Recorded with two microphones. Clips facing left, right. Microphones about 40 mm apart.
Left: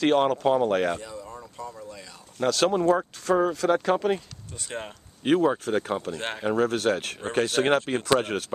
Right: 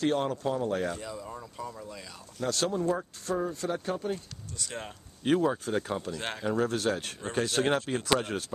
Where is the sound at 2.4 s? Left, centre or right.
Left.